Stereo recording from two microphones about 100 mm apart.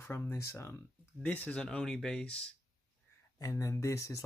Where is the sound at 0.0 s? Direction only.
25° left (ahead or behind).